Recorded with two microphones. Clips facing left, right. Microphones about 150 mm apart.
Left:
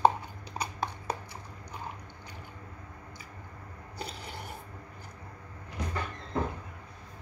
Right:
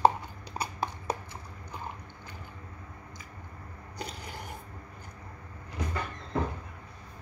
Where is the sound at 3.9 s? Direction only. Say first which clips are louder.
Right 1 dB; 30° left (ahead or behind).